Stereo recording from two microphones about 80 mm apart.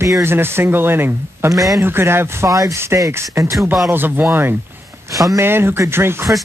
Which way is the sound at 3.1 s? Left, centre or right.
Right.